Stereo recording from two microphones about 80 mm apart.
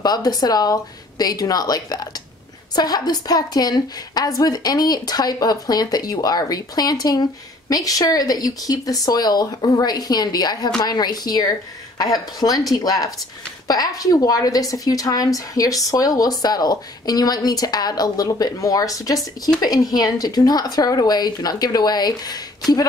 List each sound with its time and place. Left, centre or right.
0.0 s a woman's voice: left